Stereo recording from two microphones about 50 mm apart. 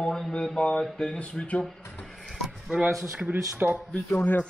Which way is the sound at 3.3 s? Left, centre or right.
Right.